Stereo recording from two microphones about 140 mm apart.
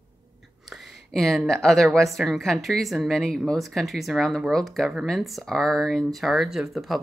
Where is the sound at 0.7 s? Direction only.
Centre (ahead or behind).